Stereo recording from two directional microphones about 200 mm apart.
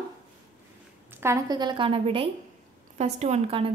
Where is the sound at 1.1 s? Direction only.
15° right (ahead or behind).